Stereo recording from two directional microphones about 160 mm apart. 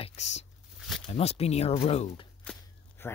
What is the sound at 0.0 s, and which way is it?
Tearing, 45° left (ahead or behind).